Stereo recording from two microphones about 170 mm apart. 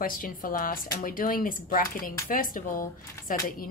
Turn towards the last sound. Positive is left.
turn(degrees=55)  # may be behind; listen again after turning